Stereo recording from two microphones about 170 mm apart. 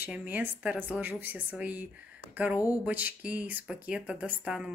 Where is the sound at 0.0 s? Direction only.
10° right (ahead or behind).